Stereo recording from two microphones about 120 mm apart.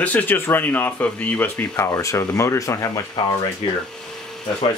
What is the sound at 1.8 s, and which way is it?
Speech, 25° left (ahead or behind).